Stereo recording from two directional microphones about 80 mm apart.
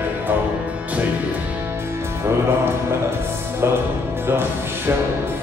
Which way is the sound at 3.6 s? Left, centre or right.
Right.